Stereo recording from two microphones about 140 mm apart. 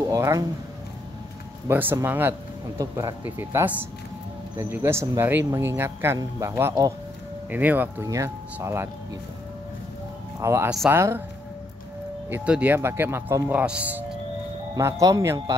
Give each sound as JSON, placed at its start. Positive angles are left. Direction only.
{"t": 0.1, "sound": "speech", "side_deg": -25}
{"t": 1.7, "sound": "speech", "side_deg": -15}
{"t": 3.3, "sound": "speech", "side_deg": -15}
{"t": 7.4, "sound": "speech", "side_deg": -10}
{"t": 10.4, "sound": "speech", "side_deg": -20}
{"t": 12.3, "sound": "speech", "side_deg": -10}
{"t": 14.8, "sound": "speech", "side_deg": -20}